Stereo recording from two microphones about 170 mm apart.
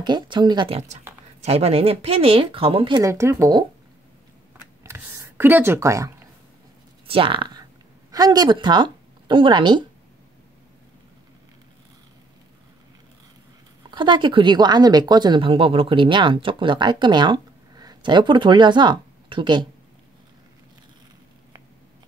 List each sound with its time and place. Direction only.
0.0 s speech: 25° right (ahead or behind)
3.0 s speech: 15° right (ahead or behind)
4.8 s a sound: 15° right (ahead or behind)
7.1 s speech: 30° right (ahead or behind)
13.8 s speech: 25° right (ahead or behind)